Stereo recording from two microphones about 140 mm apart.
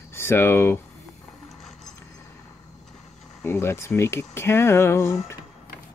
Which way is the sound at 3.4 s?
20° left (ahead or behind).